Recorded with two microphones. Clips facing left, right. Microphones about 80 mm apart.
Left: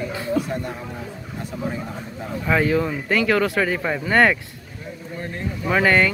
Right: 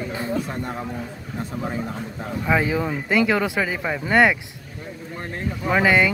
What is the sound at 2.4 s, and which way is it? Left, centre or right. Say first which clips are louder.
Speech: left 2 dB; centre.